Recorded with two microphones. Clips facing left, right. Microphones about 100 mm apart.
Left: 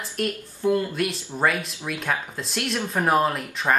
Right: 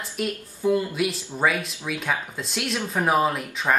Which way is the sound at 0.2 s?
5° right (ahead or behind).